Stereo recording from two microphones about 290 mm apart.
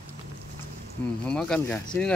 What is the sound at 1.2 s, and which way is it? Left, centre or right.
Speech, centre.